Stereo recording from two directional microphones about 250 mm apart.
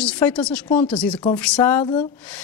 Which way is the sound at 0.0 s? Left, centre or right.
Centre.